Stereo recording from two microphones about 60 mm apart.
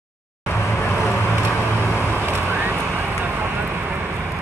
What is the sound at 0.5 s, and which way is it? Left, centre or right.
Vehicle, left.